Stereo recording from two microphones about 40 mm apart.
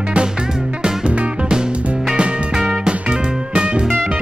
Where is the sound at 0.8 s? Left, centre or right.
Right.